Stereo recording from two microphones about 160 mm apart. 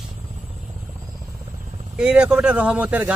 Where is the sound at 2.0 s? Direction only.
5° right (ahead or behind).